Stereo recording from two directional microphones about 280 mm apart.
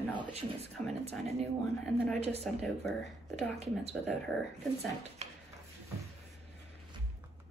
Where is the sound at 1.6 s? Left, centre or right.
Centre.